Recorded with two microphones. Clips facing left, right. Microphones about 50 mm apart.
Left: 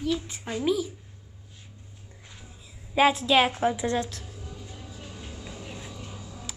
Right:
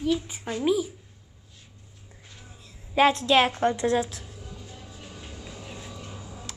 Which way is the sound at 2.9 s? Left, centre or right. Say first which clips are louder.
Right 1 dB; centre.